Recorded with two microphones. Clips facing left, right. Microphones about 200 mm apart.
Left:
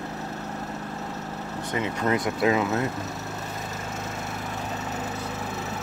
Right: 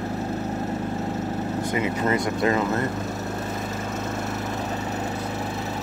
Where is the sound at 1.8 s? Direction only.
10° right (ahead or behind).